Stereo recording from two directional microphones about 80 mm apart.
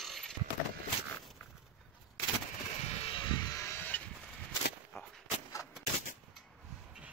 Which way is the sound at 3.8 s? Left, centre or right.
Left.